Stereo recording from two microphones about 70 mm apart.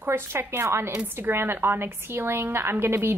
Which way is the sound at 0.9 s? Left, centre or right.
Right.